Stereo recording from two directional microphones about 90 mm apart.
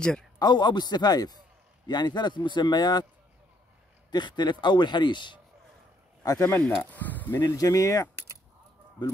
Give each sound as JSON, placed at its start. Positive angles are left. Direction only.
{"t": 0.4, "sound": "a man's voice", "side_deg": 50}
{"t": 4.1, "sound": "speech", "side_deg": 55}
{"t": 6.2, "sound": "speech", "side_deg": 40}
{"t": 6.8, "sound": "speech", "side_deg": 20}
{"t": 7.3, "sound": "speech", "side_deg": 35}